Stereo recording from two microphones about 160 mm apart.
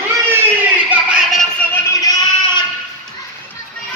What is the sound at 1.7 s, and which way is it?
Music, 25° left (ahead or behind).